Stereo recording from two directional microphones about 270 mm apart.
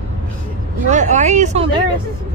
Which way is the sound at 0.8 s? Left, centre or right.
Right.